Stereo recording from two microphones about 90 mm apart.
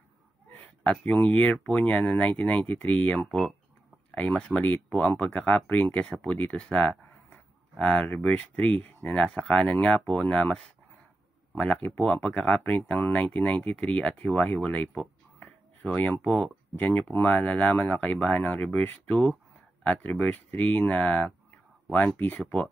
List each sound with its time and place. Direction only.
0.8 s speech: 15° left (ahead or behind)
3.3 s speech: centre (ahead or behind)
4.1 s speech: 15° left (ahead or behind)
15.3 s a sound: 20° left (ahead or behind)
16.3 s speech: 5° left (ahead or behind)
16.7 s speech: 15° left (ahead or behind)